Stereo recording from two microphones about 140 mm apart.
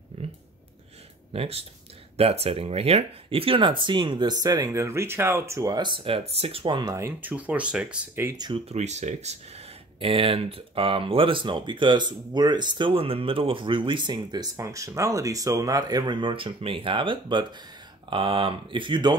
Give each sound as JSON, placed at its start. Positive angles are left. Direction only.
{"t": 1.3, "sound": "speech", "side_deg": -45}
{"t": 8.6, "sound": "speech", "side_deg": -55}
{"t": 9.9, "sound": "speech", "side_deg": -40}